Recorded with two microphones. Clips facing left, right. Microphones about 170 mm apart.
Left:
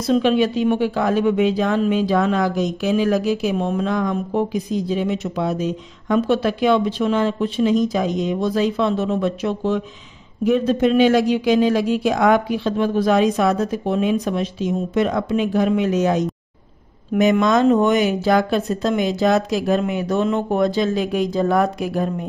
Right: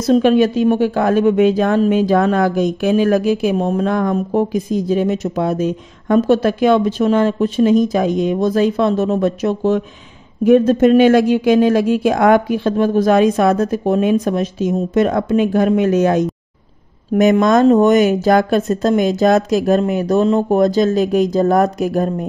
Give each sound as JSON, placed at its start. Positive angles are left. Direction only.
{"t": 0.0, "sound": "speech", "side_deg": -45}